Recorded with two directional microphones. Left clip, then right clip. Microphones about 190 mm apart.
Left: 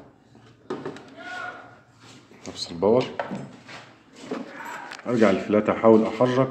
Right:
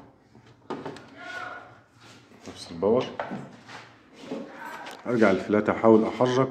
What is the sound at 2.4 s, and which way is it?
Speech, 20° left (ahead or behind).